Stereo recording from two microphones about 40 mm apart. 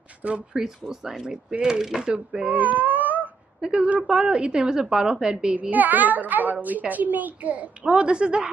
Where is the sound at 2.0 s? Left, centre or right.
Right.